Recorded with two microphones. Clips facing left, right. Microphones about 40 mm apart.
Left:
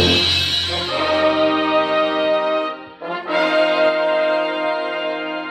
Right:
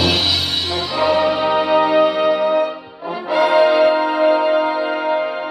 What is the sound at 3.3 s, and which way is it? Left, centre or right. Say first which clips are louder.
Brass instrument: right 3 dB; left.